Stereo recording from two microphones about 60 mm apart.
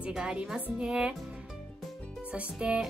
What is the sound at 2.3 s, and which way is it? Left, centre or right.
Speech, centre.